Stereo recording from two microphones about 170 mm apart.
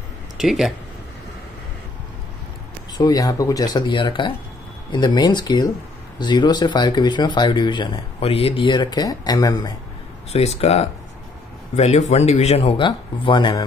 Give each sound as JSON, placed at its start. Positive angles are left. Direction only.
{"t": 0.4, "sound": "speech", "side_deg": 0}
{"t": 3.0, "sound": "speech", "side_deg": 20}
{"t": 10.3, "sound": "speech", "side_deg": 40}